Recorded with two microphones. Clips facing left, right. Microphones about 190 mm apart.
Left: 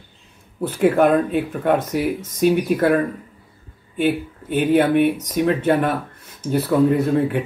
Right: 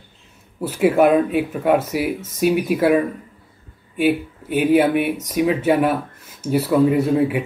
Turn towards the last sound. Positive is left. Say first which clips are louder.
# right 1 dB
turn(degrees=-10)  # may be behind; listen again after turning